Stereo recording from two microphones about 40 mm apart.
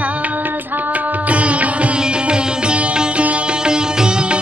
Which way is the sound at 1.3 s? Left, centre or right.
Right.